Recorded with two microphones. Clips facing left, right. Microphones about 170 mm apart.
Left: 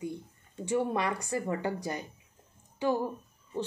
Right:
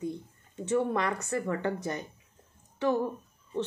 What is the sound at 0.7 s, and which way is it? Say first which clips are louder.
A woman's voice: right 1 dB; 15° left (ahead or behind).